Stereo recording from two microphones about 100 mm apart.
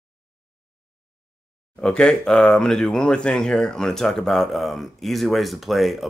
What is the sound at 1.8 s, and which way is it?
Speech, 10° left (ahead or behind).